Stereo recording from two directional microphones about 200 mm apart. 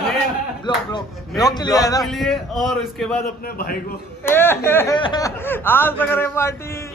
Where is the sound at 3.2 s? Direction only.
45° left (ahead or behind).